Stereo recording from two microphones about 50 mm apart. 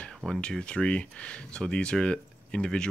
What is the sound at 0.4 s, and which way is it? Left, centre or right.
Speech, centre.